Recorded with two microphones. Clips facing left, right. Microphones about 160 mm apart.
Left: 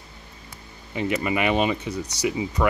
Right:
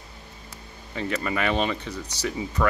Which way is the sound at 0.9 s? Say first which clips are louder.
Left 3 dB; 15° left (ahead or behind).